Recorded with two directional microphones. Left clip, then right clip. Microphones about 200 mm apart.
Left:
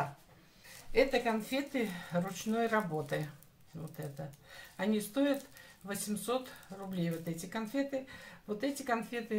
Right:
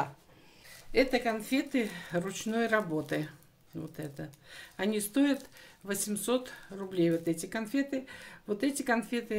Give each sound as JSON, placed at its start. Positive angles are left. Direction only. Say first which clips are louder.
{"t": 0.9, "sound": "speech", "louder": "right 2 dB", "side_deg": -55}
{"t": 4.5, "sound": "speech", "louder": "right 2 dB", "side_deg": -50}